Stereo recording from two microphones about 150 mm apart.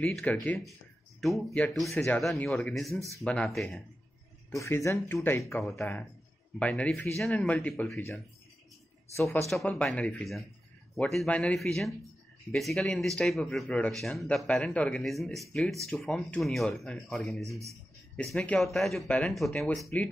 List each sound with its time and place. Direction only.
0.0 s speech: 10° left (ahead or behind)
4.6 s speech: 20° left (ahead or behind)
9.5 s speech: 5° left (ahead or behind)